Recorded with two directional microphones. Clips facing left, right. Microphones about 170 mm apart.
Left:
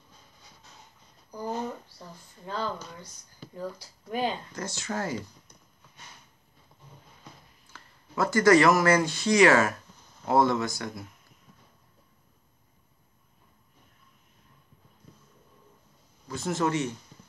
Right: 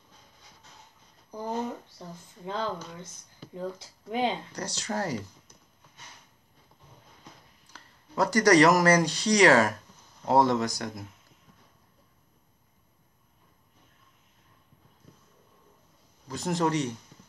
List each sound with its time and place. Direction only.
2.0 s a sound: 20° right (ahead or behind)
3.5 s speech: 25° right (ahead or behind)
4.5 s speech: 35° right (ahead or behind)
7.7 s speech: 35° right (ahead or behind)
16.3 s speech: 40° right (ahead or behind)